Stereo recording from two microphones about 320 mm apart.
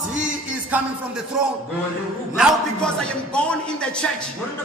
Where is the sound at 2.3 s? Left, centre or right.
Centre.